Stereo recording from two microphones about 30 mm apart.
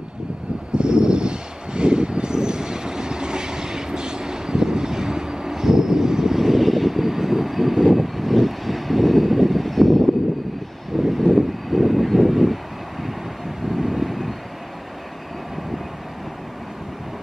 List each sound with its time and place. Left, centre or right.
0.7 s vehicle: right; by 12.5 s centre
13.7 s vehicle: centre